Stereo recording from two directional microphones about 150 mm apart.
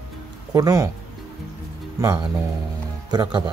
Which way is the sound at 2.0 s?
25° right (ahead or behind).